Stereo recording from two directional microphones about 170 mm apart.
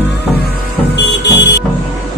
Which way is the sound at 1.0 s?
90° left.